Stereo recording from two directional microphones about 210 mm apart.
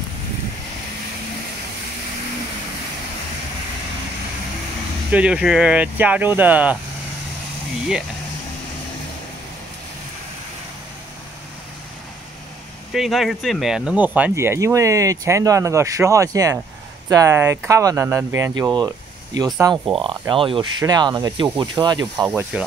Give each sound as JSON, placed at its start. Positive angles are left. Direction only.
{"t": 5.1, "sound": "speech", "side_deg": -5}
{"t": 12.9, "sound": "speech", "side_deg": 0}
{"t": 22.3, "sound": "speech", "side_deg": -5}